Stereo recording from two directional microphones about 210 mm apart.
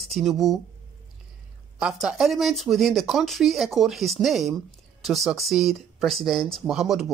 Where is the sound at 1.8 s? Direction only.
5° right (ahead or behind).